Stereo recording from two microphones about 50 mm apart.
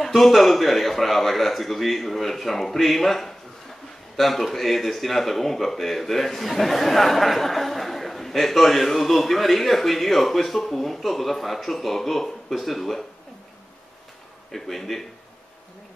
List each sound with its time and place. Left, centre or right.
0.0 s a man's voice: centre
14.5 s a man's voice: centre